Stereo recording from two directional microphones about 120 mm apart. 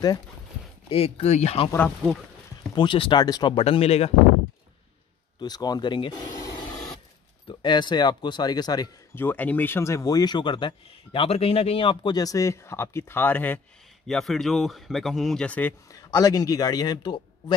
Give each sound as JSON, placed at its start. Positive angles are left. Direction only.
{"t": 0.8, "sound": "speech", "side_deg": 55}
{"t": 2.7, "sound": "speech", "side_deg": 40}
{"t": 3.5, "sound": "speech", "side_deg": 55}
{"t": 5.4, "sound": "speech", "side_deg": 35}
{"t": 9.1, "sound": "speech", "side_deg": 15}
{"t": 14.0, "sound": "speech", "side_deg": 5}
{"t": 15.9, "sound": "speech", "side_deg": 30}